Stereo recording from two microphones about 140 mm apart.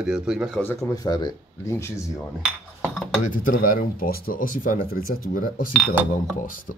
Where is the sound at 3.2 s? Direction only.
70° left (ahead or behind).